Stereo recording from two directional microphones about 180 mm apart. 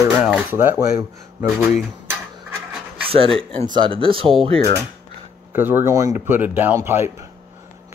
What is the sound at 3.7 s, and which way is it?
Speech, 30° right (ahead or behind).